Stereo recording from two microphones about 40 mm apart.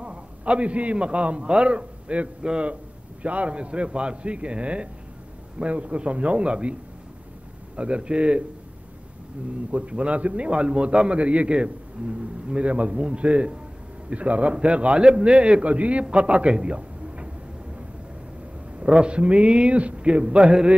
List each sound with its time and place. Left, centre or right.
0.0 s a man's voice: right
2.7 s a man's voice: right
7.7 s a man's voice: right
9.7 s a man's voice: right
18.8 s a man's voice: right